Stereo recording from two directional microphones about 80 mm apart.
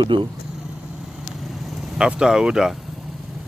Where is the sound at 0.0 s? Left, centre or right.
Right.